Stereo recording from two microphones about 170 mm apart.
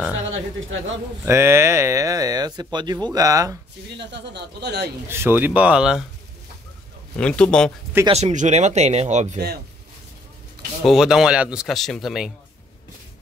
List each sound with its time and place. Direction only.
0.3 s speech: 90° right
1.2 s speech: 15° right (ahead or behind)
4.0 s speech: 90° right
5.0 s speech: 15° right (ahead or behind)
7.2 s a man's voice: 5° left (ahead or behind)
8.1 s speech: 45° right (ahead or behind)
10.9 s speech: 5° right (ahead or behind)